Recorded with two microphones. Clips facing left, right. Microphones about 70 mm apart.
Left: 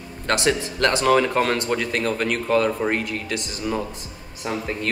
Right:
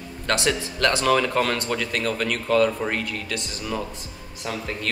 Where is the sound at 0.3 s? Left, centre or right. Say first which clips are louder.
Left 2 dB; left.